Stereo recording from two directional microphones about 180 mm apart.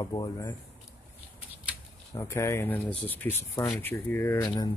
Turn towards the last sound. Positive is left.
turn(degrees=15)  # may be behind; listen again after turning